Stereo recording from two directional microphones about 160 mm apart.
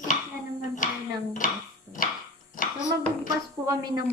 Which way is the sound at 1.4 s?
55° left (ahead or behind).